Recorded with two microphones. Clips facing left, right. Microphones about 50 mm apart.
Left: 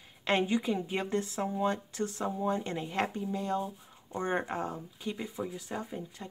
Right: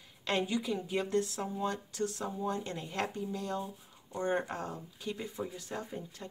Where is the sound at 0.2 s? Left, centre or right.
Left.